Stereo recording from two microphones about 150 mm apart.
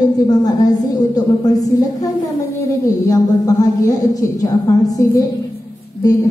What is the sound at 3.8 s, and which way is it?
A woman's voice, 25° left (ahead or behind).